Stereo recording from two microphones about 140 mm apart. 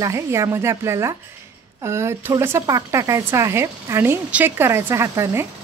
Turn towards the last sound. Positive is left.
turn(degrees=-20)  # may be behind; listen again after turning